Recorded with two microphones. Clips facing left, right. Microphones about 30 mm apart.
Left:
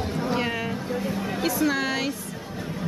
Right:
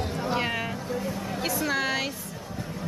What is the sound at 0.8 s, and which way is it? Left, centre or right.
Speech, centre.